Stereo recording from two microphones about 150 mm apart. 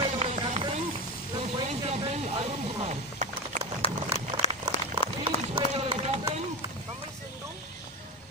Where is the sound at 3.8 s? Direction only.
45° left (ahead or behind).